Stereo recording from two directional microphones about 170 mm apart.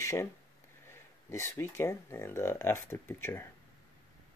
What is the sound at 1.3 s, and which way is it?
Speech, 15° left (ahead or behind).